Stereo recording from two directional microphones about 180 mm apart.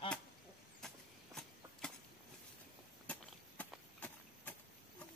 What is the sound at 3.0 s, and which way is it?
Chop, 5° left (ahead or behind).